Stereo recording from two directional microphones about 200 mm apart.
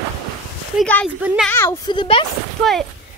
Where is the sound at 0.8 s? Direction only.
5° left (ahead or behind).